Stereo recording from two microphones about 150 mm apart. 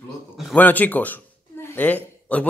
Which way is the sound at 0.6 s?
10° left (ahead or behind).